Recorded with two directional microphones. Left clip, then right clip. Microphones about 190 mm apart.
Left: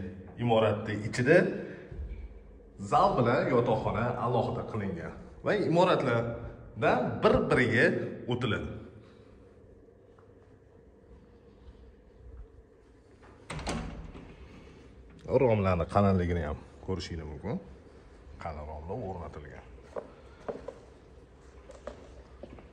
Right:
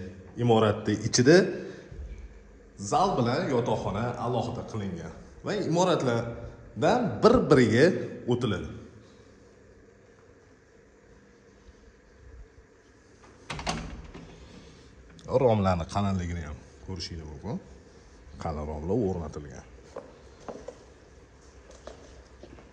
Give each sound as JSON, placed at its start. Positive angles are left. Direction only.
{"t": 0.5, "sound": "speech", "side_deg": -35}
{"t": 2.8, "sound": "a man's voice", "side_deg": -15}
{"t": 15.2, "sound": "a man's voice", "side_deg": -10}
{"t": 15.9, "sound": "a man's voice", "side_deg": 5}
{"t": 18.4, "sound": "speech", "side_deg": -35}
{"t": 20.0, "sound": "walk", "side_deg": -10}